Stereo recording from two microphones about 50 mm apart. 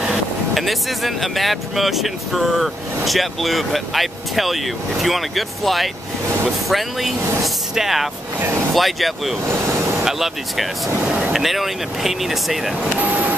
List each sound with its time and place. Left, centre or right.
0.0 s speech: centre
9.5 s vehicle: right
10.0 s speech: centre
12.9 s vehicle: right